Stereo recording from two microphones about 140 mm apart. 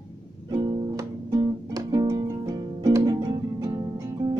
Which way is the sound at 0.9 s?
25° right (ahead or behind).